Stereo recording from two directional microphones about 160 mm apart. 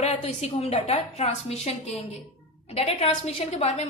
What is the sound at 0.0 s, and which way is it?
A woman's voice, 40° left (ahead or behind).